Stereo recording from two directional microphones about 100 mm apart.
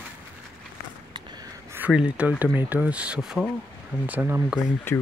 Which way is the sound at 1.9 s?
10° right (ahead or behind).